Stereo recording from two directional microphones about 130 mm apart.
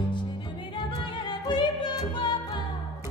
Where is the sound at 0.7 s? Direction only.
35° left (ahead or behind).